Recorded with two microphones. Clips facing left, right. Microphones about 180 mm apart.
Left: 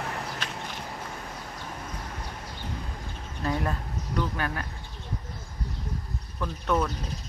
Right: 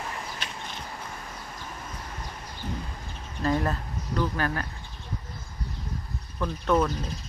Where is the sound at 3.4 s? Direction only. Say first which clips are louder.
Right 3 dB; 10° left (ahead or behind).